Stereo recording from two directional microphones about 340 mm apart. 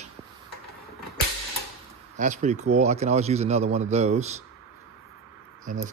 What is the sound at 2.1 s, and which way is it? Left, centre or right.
Speech, right.